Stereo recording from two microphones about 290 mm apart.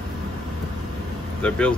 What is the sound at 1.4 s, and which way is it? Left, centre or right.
Speech, centre.